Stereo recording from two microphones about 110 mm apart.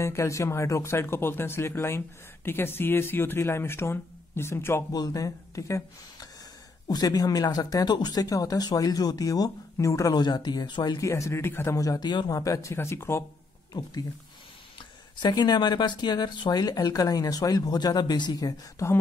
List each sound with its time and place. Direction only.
0.0 s speech: 25° left (ahead or behind)
4.9 s speech: 35° left (ahead or behind)
6.9 s speech: 35° left (ahead or behind)
11.1 s speech: 25° left (ahead or behind)
15.1 s speech: 40° left (ahead or behind)